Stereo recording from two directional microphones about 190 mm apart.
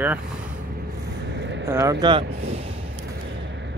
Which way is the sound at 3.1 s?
70° right (ahead or behind).